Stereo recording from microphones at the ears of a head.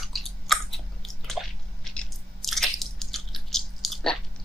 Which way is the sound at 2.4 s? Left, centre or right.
Centre.